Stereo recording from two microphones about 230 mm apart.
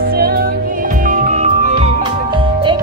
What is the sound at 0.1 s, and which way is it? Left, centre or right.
Music, right.